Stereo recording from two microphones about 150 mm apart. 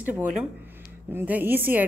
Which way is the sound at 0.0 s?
10° right (ahead or behind).